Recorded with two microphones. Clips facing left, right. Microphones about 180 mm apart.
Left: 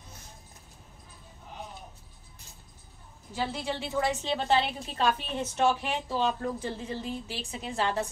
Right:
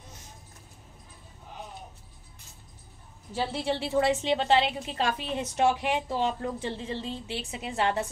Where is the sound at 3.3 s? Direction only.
30° right (ahead or behind).